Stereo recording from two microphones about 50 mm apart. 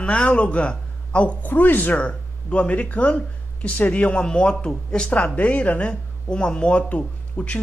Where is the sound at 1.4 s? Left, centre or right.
Left.